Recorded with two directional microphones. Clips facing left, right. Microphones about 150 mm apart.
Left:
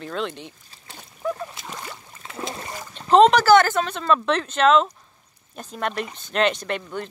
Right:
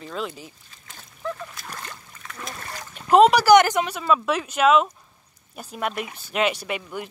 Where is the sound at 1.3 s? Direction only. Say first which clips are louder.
Left 3 dB; 25° left (ahead or behind).